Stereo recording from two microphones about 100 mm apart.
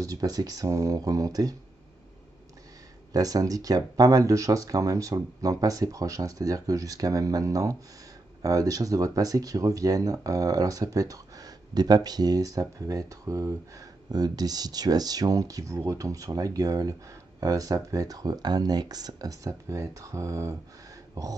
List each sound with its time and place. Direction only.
0.0 s speech: 35° right (ahead or behind)
3.1 s speech: 35° right (ahead or behind)
21.1 s a sound: 35° right (ahead or behind)